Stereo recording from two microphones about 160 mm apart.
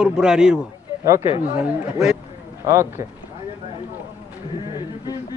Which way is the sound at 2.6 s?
20° right (ahead or behind).